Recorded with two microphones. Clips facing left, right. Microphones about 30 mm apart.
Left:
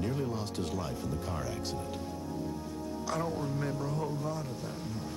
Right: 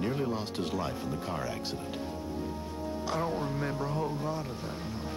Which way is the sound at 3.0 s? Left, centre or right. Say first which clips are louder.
Right 2 dB; right.